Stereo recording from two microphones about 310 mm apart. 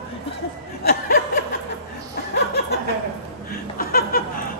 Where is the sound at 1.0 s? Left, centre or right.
Left.